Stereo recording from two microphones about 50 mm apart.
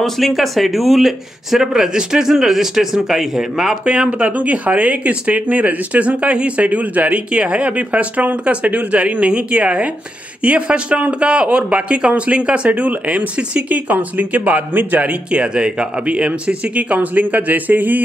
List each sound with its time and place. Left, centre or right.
0.0 s speech: centre
3.8 s speech: right
15.3 s speech: centre; by 18.0 s right